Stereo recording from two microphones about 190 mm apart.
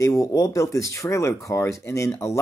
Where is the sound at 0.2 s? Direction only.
15° left (ahead or behind).